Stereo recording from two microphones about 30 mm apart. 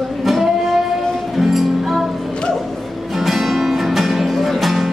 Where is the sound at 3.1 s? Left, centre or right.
Centre.